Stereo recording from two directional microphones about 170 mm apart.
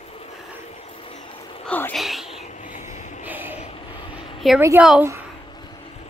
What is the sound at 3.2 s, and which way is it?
Vehicle, 10° right (ahead or behind).